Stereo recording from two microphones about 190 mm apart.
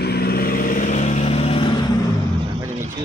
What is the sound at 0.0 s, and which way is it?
Vehicle, 55° left (ahead or behind).